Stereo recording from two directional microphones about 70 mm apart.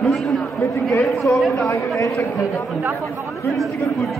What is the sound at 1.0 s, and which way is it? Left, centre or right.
Speech, centre.